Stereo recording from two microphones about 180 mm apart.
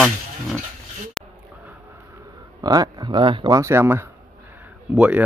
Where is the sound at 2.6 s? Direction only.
20° right (ahead or behind).